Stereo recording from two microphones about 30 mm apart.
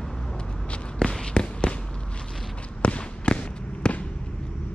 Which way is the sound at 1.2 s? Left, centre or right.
Left.